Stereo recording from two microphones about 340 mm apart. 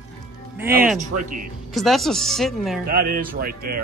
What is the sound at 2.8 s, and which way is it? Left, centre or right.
Speech, right.